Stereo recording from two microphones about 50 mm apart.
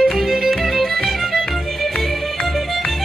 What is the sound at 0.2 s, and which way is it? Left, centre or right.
Music, centre.